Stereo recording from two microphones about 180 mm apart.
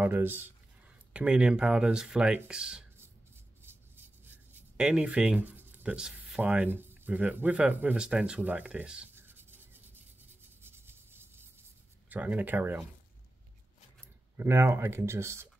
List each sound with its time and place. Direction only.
0.0 s speech: 10° right (ahead or behind)
3.6 s writing: 10° right (ahead or behind)
10.6 s a sound: 10° right (ahead or behind)
12.1 s speech: 10° right (ahead or behind)
14.3 s speech: 15° right (ahead or behind)